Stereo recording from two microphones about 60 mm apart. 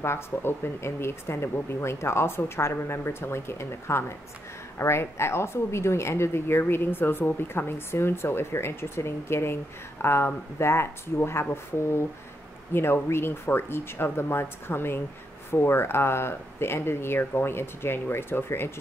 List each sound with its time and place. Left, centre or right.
0.0 s a woman's voice: left
12.7 s speech: left